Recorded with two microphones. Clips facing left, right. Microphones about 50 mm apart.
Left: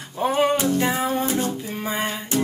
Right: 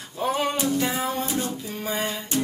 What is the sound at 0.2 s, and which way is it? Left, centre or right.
Music, centre.